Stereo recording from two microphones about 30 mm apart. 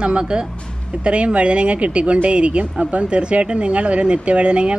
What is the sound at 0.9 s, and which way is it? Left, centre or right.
Speech, right.